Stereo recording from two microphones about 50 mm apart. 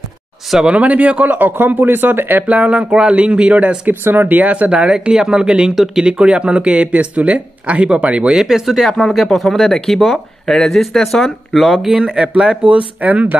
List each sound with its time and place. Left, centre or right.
0.7 s speech: right
3.8 s speech: right
8.4 s speech: centre
11.9 s speech: centre
12.6 s speech: right